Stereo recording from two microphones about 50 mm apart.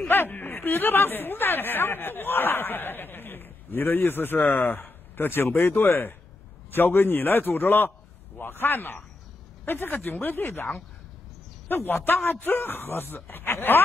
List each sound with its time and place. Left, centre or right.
0.1 s speech: left
11.7 s speech: left